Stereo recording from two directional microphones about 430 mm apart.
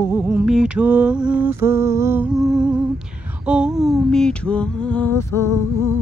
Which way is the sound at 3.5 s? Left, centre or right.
Centre.